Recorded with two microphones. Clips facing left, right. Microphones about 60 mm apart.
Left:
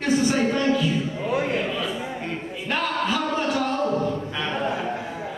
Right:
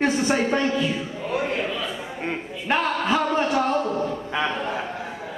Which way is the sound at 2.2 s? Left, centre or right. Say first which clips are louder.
Right 3 dB; right.